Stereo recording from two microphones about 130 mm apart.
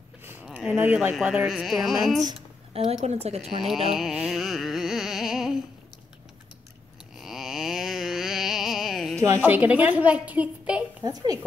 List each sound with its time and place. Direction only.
0.2 s a sound: 15° right (ahead or behind)
0.5 s speech: 5° right (ahead or behind)
2.7 s speech: 50° right (ahead or behind)
3.9 s music: 5° right (ahead or behind)
7.2 s music: 5° right (ahead or behind)
9.4 s a woman's voice: 10° right (ahead or behind)
11.1 s speech: 30° right (ahead or behind)